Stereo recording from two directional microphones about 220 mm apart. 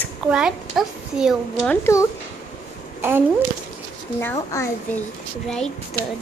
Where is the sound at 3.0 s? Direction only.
10° right (ahead or behind).